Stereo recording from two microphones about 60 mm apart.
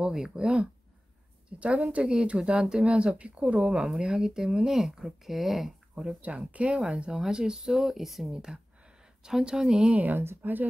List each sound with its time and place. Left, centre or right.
0.0 s a woman's voice: centre
6.2 s speech: centre
10.1 s speech: right